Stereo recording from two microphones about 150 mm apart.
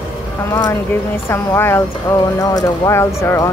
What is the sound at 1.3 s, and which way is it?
Speech, 15° left (ahead or behind).